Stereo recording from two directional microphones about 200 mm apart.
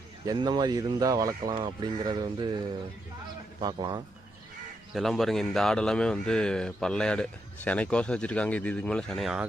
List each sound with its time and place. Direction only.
0.2 s speech: 20° right (ahead or behind)
3.6 s speech: 20° right (ahead or behind)
4.9 s speech: centre (ahead or behind)